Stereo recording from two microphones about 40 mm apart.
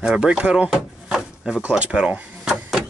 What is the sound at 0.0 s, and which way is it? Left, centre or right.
Speech, centre.